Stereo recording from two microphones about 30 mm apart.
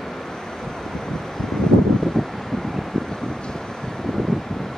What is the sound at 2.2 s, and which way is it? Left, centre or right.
Wind, centre.